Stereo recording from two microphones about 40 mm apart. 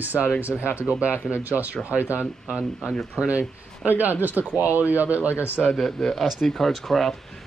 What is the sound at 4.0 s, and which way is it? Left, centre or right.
Speech, right.